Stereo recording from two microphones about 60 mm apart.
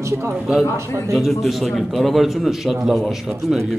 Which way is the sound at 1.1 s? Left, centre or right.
Centre.